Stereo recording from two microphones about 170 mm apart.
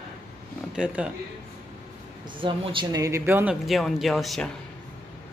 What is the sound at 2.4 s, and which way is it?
Speech, 30° right (ahead or behind).